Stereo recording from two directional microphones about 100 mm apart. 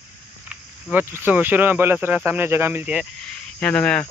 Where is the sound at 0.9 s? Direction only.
20° right (ahead or behind).